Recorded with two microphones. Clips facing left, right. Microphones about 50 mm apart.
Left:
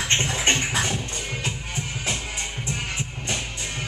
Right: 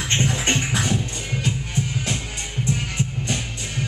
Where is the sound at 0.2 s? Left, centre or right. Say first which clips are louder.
Right 1 dB; left.